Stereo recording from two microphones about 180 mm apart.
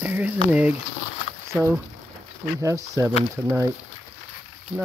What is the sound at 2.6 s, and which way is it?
Speech, 15° right (ahead or behind).